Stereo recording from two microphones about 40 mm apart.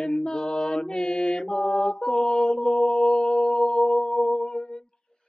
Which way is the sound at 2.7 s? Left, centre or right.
Centre.